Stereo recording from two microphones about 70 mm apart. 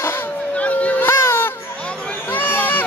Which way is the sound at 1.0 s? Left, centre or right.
Left.